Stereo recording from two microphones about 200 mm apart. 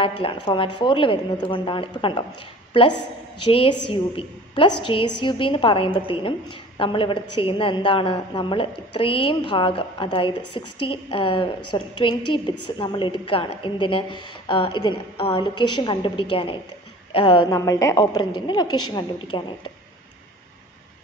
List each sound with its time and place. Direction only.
0.0 s a woman's voice: 25° left (ahead or behind)